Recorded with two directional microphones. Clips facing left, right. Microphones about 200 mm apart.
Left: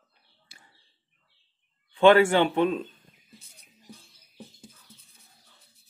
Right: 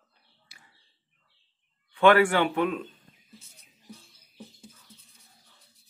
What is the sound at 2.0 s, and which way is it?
Speech, 25° left (ahead or behind).